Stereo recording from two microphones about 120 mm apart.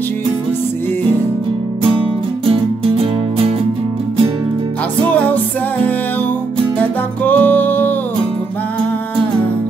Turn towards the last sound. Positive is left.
turn(degrees=15)  # may be behind; listen again after turning